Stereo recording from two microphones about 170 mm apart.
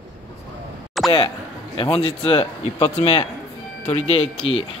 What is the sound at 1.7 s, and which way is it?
A man's voice, 30° left (ahead or behind).